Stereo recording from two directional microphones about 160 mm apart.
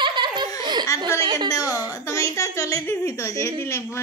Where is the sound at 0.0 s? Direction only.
30° right (ahead or behind).